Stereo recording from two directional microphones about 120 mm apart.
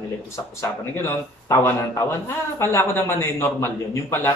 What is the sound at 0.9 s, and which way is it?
A man's voice, 20° left (ahead or behind).